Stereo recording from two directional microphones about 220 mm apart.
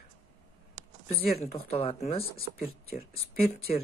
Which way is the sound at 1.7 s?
25° left (ahead or behind).